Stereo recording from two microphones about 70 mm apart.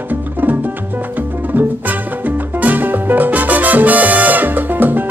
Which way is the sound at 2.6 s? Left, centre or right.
Right.